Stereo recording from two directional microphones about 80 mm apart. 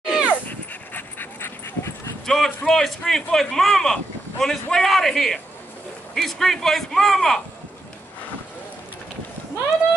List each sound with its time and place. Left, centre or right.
0.0 s dog: centre
0.5 s dog: left
2.2 s a man's voice: centre